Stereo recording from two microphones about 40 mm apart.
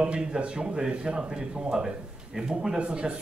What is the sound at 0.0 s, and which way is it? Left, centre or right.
Speech, right.